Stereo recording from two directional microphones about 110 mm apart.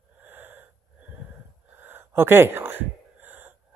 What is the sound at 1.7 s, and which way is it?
Gasp, 20° right (ahead or behind).